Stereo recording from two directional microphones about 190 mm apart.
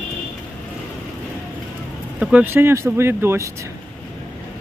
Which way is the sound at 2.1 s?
5° right (ahead or behind).